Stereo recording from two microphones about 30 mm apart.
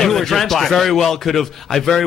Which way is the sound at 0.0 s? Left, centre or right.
Centre.